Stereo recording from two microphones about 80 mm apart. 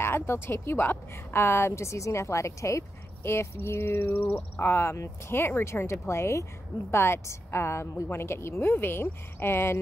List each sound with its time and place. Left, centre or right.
0.0 s speech: left